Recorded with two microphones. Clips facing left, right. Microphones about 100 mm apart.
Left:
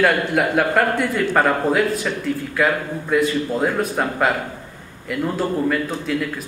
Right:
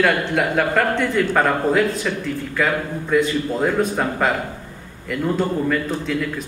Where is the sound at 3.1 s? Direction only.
5° left (ahead or behind).